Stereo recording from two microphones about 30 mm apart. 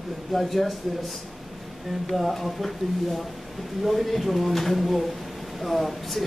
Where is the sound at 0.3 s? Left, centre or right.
Centre.